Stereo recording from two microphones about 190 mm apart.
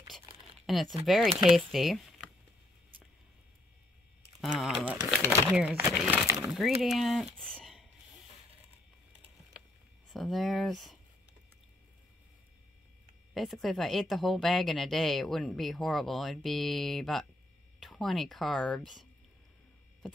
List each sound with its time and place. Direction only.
0.7 s speech: centre (ahead or behind)
4.4 s speech: centre (ahead or behind)
5.0 s speech: 10° left (ahead or behind)
5.5 s speech: 5° right (ahead or behind)
10.1 s speech: centre (ahead or behind)
13.3 s speech: centre (ahead or behind)